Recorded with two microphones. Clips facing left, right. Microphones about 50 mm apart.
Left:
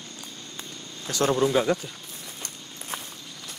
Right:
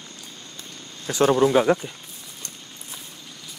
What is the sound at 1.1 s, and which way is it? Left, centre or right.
Speech, right.